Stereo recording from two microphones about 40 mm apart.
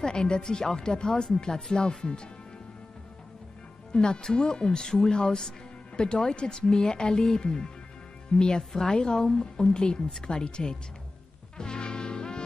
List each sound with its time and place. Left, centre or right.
0.0 s a woman's voice: centre
3.9 s a woman's voice: centre
11.5 s music: left